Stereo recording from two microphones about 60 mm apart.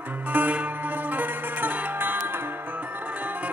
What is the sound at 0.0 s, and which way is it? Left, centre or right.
Music, right.